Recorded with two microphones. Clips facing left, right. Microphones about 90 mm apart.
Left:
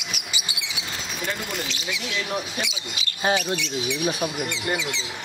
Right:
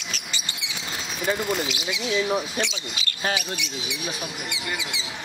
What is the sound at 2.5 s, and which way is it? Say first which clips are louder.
Speech: right 3 dB; 10° left (ahead or behind).